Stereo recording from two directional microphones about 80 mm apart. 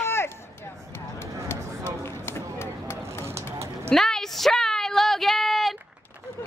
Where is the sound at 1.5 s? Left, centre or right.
Left.